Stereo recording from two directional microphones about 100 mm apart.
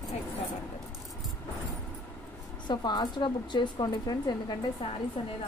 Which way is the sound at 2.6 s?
45° left (ahead or behind).